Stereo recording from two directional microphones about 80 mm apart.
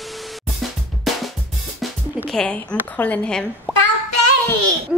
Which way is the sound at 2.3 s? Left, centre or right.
Centre.